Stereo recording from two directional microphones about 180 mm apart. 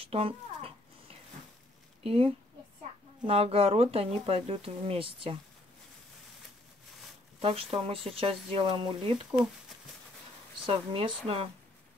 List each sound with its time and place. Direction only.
0.0 s a sound: 30° right (ahead or behind)
2.0 s speech: 30° right (ahead or behind)
7.4 s speech: 30° right (ahead or behind)
10.6 s speech: 30° right (ahead or behind)